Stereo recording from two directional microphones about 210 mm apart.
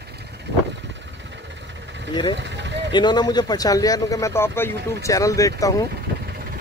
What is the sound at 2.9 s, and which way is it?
Speech, 20° left (ahead or behind).